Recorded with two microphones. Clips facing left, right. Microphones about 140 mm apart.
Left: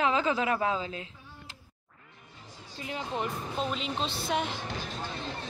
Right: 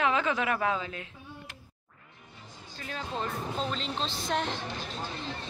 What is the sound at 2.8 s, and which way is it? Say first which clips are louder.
Speech: left 2 dB; 15° left (ahead or behind).